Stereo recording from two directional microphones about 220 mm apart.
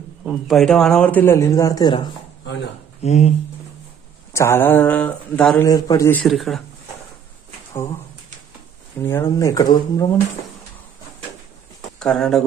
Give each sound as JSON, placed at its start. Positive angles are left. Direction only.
{"t": 0.2, "sound": "a man's voice", "side_deg": 0}
{"t": 3.0, "sound": "speech", "side_deg": 30}
{"t": 4.3, "sound": "a man's voice", "side_deg": 10}
{"t": 5.7, "sound": "a man's voice", "side_deg": 15}
{"t": 6.2, "sound": "speech", "side_deg": 0}
{"t": 9.0, "sound": "a man's voice", "side_deg": 15}
{"t": 12.0, "sound": "speech", "side_deg": 0}